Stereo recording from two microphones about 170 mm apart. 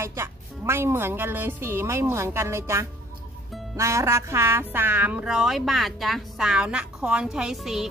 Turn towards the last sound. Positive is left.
turn(degrees=0)  # may be behind; listen again after turning